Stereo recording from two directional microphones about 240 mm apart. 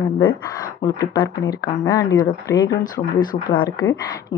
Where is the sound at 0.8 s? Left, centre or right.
Centre.